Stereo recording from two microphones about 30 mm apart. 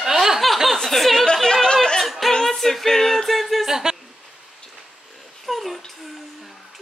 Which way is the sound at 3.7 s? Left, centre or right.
Centre.